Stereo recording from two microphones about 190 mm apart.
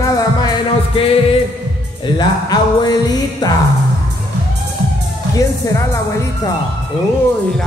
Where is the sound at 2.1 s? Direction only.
20° left (ahead or behind).